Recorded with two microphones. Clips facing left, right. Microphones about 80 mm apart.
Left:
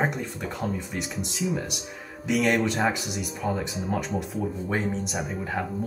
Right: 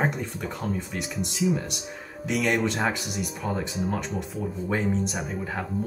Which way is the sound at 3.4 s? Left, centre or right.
Left.